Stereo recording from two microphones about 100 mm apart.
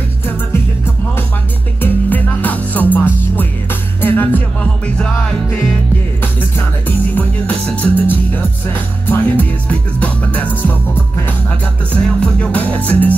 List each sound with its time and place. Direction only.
1.8 s music: 15° left (ahead or behind)
7.2 s music: 15° left (ahead or behind)
11.9 s music: 10° left (ahead or behind)